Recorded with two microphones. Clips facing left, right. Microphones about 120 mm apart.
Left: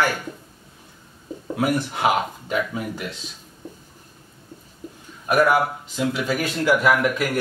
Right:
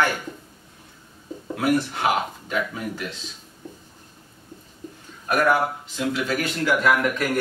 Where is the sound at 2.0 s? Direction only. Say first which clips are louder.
Left 2 dB; 20° left (ahead or behind).